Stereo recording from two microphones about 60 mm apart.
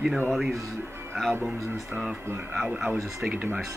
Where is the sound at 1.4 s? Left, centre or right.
Centre.